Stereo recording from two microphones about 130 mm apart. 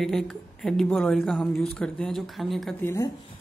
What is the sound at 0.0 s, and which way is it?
Speech, centre (ahead or behind).